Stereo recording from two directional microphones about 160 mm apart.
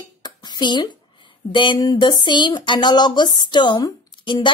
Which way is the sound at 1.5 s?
30° left (ahead or behind).